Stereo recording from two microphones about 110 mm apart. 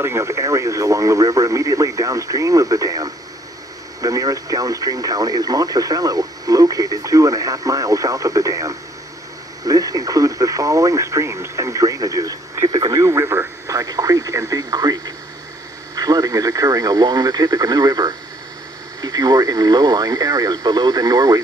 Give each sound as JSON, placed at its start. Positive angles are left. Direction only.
{"t": 0.0, "sound": "speech", "side_deg": -25}
{"t": 12.6, "sound": "speech", "side_deg": -40}